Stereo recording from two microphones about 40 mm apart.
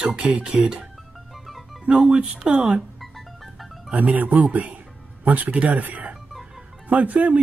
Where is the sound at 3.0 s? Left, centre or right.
Centre.